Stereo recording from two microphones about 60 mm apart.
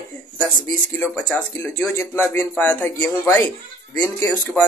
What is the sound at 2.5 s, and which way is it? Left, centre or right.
Speech, left.